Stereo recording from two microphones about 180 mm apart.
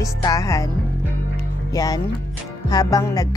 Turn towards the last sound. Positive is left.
turn(degrees=20)  # may be behind; listen again after turning